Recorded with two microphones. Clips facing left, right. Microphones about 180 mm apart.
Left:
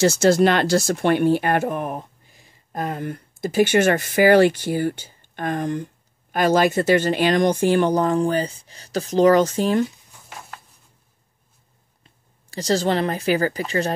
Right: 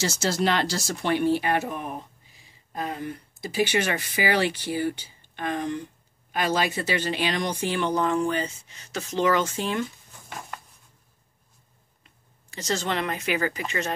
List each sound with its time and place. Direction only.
0.0 s speech: 55° left (ahead or behind); by 9.8 s 40° left (ahead or behind)
12.0 s speech: 35° left (ahead or behind)